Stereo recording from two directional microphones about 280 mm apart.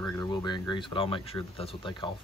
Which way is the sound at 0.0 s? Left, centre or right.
Centre.